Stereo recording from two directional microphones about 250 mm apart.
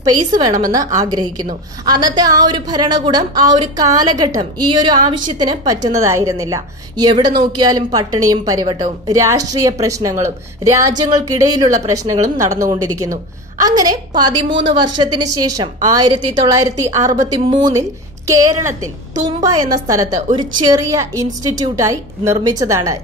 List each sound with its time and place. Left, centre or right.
0.3 s a woman's voice: centre
19.2 s a woman's voice: centre